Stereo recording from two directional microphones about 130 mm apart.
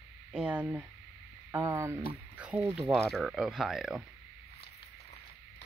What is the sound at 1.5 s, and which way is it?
Speech, 20° right (ahead or behind).